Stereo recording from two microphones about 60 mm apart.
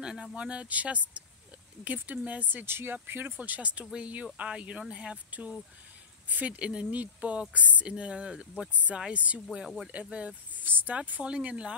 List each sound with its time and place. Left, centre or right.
0.0 s speech: centre; by 11.0 s right
11.0 s speech: right